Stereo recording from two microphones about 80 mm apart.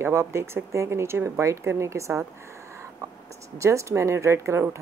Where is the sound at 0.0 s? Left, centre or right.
Right.